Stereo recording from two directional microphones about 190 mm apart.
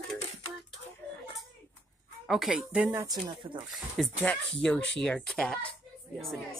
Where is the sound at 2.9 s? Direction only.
20° right (ahead or behind).